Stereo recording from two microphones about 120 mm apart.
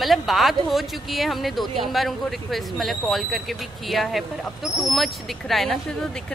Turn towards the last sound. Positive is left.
turn(degrees=0)  # may be behind; listen again after turning